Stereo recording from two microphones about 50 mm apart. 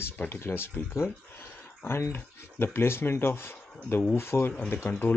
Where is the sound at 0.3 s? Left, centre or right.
Left.